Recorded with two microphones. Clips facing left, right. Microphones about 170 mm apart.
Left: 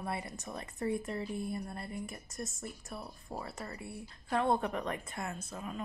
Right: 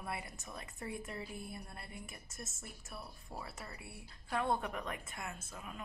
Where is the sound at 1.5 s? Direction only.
45° left (ahead or behind).